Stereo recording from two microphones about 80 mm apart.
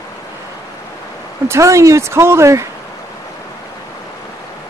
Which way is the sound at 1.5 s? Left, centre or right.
Right.